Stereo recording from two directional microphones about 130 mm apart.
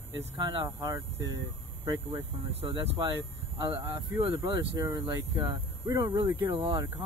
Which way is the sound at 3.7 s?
20° right (ahead or behind).